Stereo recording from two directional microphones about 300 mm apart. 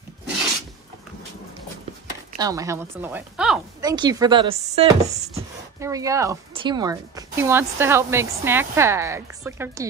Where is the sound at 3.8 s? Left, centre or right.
Centre.